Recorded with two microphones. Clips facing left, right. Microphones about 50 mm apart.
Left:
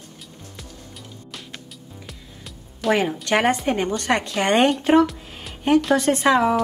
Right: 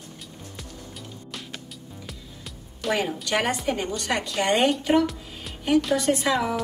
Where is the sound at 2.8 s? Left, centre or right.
Centre.